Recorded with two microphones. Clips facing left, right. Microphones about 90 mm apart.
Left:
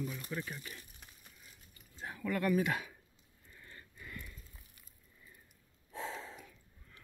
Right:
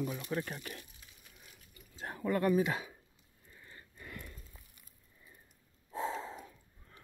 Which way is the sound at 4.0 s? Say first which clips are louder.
Right 1 dB; 45° right (ahead or behind).